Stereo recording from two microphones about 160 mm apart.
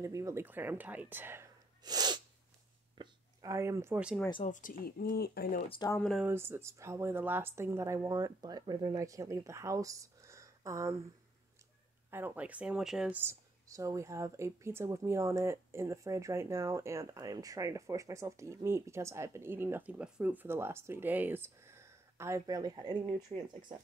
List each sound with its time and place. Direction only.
0.0 s speech: 20° right (ahead or behind)
1.8 s sneeze: 25° right (ahead or behind)
3.0 s a sound: 20° right (ahead or behind)
4.5 s speech: 55° left (ahead or behind); by 5.6 s 75° left (ahead or behind)
5.7 s speech: 25° left (ahead or behind)
5.9 s speech: 5° left (ahead or behind)
6.2 s speech: 15° right (ahead or behind)
12.1 s speech: 10° right (ahead or behind)